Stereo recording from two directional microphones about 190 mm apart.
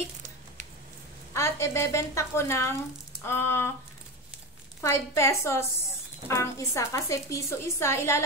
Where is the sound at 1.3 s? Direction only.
15° left (ahead or behind).